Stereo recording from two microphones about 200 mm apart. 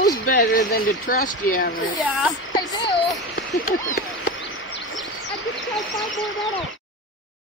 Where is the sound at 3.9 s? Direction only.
45° left (ahead or behind).